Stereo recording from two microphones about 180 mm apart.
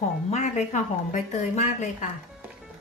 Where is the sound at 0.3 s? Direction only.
40° left (ahead or behind).